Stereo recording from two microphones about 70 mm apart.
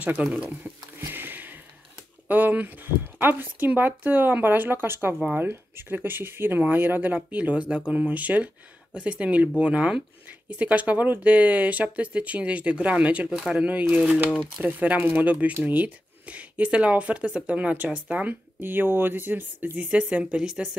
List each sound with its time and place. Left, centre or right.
0.0 s a sound: right
2.2 s speech: right
13.7 s speech: right
18.1 s speech: right; by 20.7 s centre